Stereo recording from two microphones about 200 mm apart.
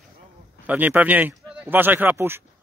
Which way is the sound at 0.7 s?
10° right (ahead or behind).